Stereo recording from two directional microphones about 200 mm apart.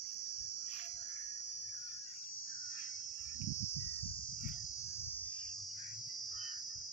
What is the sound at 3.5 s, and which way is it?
Cricket, 30° left (ahead or behind).